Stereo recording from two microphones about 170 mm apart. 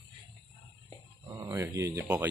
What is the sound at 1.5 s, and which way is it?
Speech, 15° right (ahead or behind).